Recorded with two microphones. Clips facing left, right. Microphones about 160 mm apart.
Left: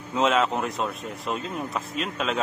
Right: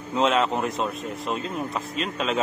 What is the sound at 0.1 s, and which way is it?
Speech, centre (ahead or behind).